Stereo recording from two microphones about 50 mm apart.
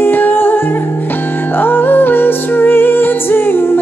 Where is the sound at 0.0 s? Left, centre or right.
Left.